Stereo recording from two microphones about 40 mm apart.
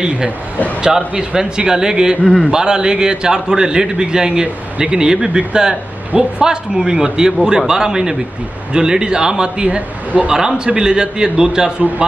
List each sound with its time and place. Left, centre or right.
0.8 s a man's voice: centre
9.8 s a man's voice: right
10.3 s a man's voice: centre